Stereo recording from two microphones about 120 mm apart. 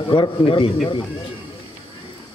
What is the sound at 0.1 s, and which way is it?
Speech, 45° left (ahead or behind).